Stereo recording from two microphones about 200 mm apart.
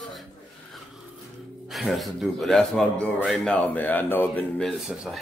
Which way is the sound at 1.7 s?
Centre (ahead or behind).